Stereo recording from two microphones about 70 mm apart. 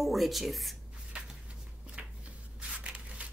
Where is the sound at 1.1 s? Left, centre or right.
Centre.